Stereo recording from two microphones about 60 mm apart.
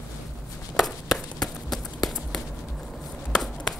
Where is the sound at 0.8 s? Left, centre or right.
Centre.